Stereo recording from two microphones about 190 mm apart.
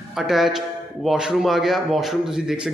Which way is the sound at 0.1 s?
Centre (ahead or behind).